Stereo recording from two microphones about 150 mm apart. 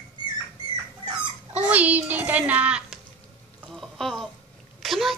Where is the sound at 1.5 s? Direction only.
10° right (ahead or behind).